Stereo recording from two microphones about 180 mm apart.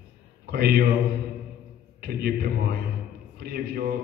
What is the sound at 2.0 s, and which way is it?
A man's voice, 60° right (ahead or behind).